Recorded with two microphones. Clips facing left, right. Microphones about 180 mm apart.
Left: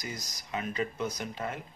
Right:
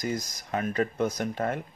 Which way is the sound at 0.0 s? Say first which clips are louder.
Right 10 dB; 50° right (ahead or behind).